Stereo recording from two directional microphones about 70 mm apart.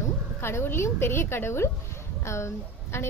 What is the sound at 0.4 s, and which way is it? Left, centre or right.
A woman's voice, left.